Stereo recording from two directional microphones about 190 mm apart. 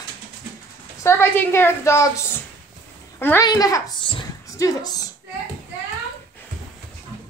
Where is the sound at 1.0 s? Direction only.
15° left (ahead or behind).